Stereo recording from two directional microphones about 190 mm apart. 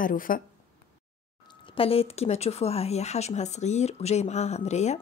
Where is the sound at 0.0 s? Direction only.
45° left (ahead or behind).